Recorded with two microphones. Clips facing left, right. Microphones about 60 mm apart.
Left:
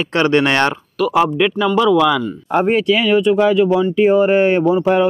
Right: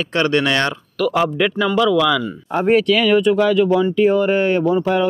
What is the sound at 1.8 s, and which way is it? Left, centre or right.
Speech, centre.